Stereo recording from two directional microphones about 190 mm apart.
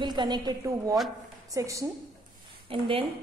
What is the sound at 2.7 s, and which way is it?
Speech, 30° right (ahead or behind).